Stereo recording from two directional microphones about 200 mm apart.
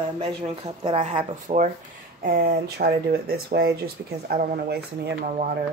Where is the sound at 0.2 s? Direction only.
25° right (ahead or behind).